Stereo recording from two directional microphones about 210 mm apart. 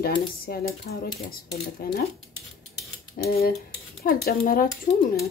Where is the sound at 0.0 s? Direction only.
45° left (ahead or behind).